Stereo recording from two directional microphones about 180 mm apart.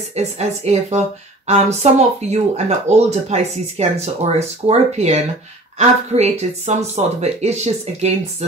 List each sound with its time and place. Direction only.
0.1 s speech: 35° right (ahead or behind)